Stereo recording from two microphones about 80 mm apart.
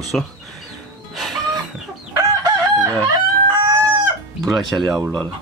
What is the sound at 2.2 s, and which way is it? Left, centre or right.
Chicken, right.